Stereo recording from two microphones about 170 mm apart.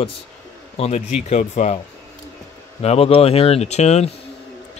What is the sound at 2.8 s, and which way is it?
Speech, 40° left (ahead or behind).